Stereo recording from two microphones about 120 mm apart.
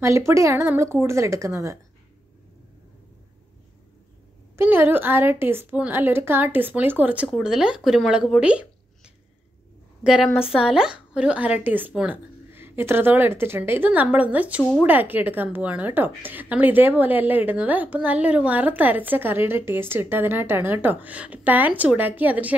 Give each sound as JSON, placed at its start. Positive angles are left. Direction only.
{"t": 0.0, "sound": "a woman's voice", "side_deg": -25}
{"t": 4.6, "sound": "a woman's voice", "side_deg": -20}
{"t": 12.4, "sound": "a woman's voice", "side_deg": -20}